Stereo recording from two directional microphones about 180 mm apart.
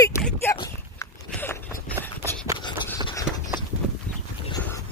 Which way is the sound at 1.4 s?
10° left (ahead or behind).